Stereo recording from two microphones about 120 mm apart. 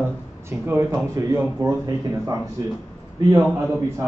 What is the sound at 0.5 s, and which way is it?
Speech, 20° right (ahead or behind).